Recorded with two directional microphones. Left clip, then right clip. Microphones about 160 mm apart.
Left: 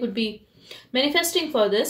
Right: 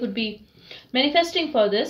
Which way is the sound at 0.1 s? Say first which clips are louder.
Left 1 dB; 35° left (ahead or behind).